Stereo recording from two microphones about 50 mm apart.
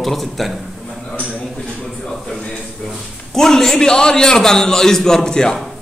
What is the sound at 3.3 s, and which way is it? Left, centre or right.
A man's voice, centre.